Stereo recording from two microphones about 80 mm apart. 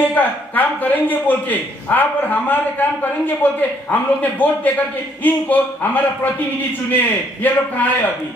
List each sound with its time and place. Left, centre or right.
0.0 s a man's voice: left